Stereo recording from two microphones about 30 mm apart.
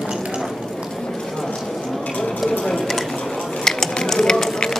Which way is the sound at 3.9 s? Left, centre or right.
Centre.